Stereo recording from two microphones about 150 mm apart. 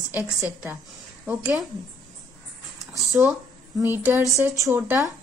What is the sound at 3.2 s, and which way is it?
A woman's voice, 15° right (ahead or behind).